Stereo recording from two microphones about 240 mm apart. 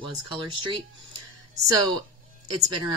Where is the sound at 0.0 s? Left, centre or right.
Centre.